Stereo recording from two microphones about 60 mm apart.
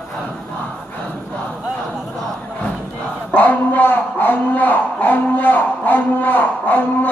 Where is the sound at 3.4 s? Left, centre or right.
Left.